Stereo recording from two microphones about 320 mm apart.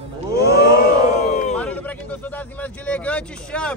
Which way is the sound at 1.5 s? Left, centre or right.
Centre.